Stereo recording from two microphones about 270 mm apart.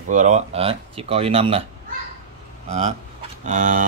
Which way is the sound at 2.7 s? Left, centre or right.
Right.